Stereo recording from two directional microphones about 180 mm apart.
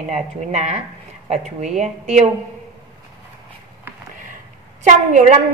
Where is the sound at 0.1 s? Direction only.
40° right (ahead or behind).